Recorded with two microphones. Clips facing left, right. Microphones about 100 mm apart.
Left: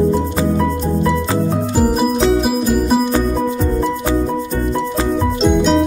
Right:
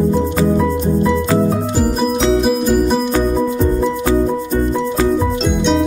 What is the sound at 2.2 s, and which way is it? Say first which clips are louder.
Music: even; 5° left (ahead or behind).